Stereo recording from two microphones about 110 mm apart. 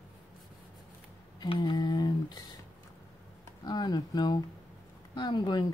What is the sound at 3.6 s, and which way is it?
Speech, 40° left (ahead or behind).